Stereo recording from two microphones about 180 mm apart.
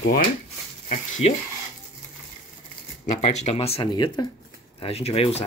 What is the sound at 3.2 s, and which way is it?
Speech, 40° left (ahead or behind).